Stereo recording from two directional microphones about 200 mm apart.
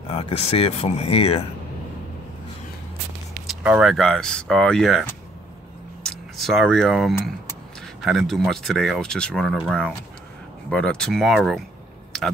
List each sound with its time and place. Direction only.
0.1 s speech: 30° left (ahead or behind)
3.4 s speech: 5° right (ahead or behind)